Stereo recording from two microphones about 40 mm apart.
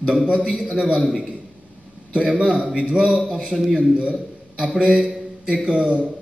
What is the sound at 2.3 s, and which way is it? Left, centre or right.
A man's voice, right.